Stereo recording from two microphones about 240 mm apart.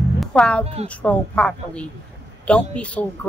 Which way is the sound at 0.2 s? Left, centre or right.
Centre.